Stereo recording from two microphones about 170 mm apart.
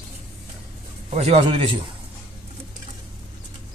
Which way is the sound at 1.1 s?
35° right (ahead or behind).